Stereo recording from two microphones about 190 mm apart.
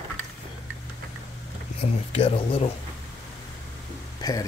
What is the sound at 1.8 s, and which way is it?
Speech, 30° left (ahead or behind).